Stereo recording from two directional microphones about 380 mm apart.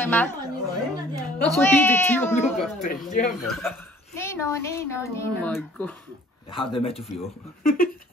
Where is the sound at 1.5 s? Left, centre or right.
Centre.